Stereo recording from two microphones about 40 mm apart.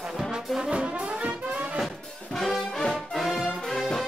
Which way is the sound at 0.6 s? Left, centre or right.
Right.